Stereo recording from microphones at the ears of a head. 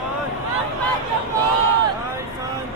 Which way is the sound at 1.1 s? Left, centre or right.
Right.